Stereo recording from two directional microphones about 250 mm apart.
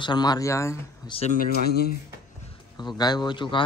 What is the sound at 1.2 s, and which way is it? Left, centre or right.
Speech, left.